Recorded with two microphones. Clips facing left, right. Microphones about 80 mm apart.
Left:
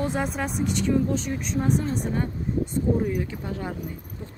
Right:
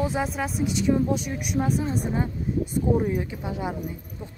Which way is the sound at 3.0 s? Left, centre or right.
Right.